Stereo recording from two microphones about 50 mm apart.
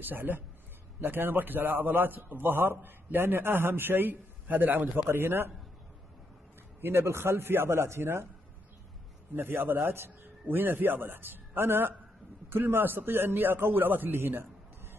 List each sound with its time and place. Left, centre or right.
0.0 s a man's voice: right
5.2 s a man's voice: right
6.8 s a man's voice: right
9.3 s a man's voice: right